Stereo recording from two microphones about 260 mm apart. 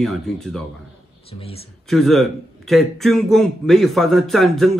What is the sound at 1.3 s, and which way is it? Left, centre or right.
Speech, left.